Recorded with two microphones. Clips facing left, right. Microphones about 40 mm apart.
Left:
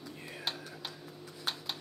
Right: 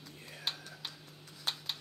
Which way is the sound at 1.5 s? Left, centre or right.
Centre.